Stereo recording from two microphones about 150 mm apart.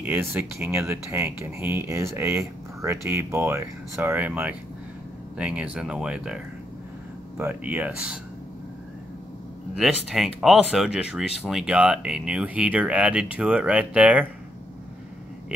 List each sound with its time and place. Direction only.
0.0 s speech: 15° right (ahead or behind)
9.8 s speech: 5° right (ahead or behind)